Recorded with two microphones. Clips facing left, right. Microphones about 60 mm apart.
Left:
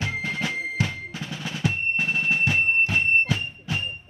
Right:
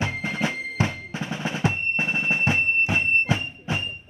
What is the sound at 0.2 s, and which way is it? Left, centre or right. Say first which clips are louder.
Drum: right 1 dB; right.